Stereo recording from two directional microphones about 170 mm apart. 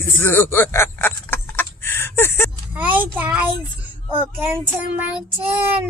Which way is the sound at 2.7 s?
10° right (ahead or behind).